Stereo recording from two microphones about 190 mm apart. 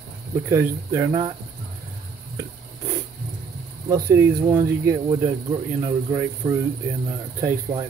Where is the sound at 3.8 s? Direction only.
15° right (ahead or behind).